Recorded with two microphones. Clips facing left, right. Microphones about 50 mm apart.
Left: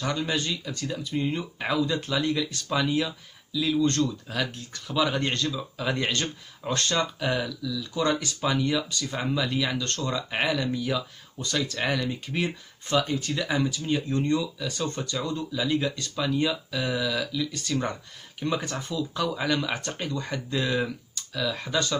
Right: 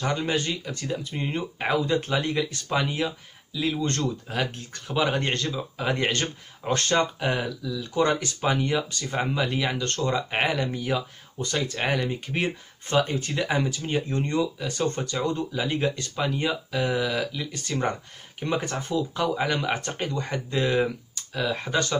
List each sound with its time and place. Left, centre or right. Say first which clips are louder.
0.0 s speech: right 2 dB; right